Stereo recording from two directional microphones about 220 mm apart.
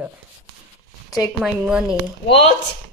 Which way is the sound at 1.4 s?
5° right (ahead or behind).